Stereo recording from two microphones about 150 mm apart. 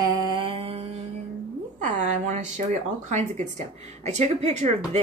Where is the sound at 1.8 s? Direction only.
55° right (ahead or behind).